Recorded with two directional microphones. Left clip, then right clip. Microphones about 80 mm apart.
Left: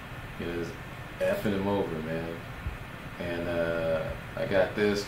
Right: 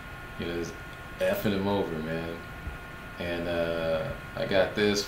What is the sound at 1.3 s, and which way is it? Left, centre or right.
Speech, right.